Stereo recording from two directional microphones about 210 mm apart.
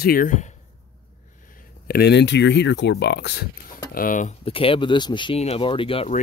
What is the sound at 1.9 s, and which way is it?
Speech, 50° left (ahead or behind).